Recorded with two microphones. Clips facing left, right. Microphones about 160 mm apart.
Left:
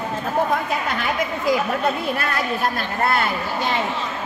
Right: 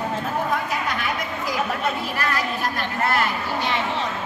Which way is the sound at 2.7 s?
35° left (ahead or behind).